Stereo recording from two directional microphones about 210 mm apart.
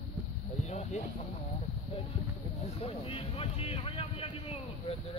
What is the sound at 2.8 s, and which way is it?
Speech, 25° left (ahead or behind).